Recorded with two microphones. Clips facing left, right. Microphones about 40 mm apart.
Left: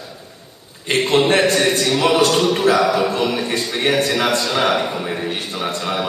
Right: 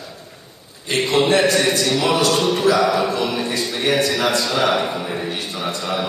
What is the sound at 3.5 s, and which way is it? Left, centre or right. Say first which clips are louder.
Speech: left 1 dB; left.